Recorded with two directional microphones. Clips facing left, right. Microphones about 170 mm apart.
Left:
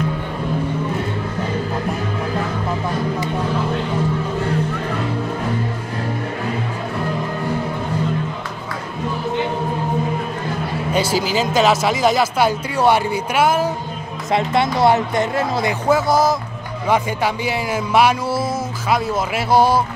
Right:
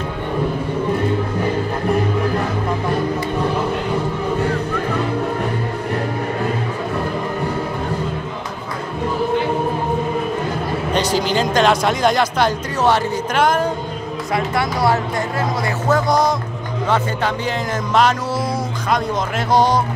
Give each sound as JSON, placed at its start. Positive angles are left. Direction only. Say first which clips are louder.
{"t": 10.9, "sound": "speech", "louder": "even", "side_deg": 10}
{"t": 14.3, "sound": "speech", "louder": "left 3 dB", "side_deg": 25}
{"t": 15.9, "sound": "speech", "louder": "left 1 dB", "side_deg": 5}